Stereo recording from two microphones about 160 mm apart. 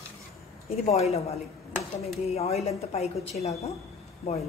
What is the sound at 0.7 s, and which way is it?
A woman's voice, 40° left (ahead or behind).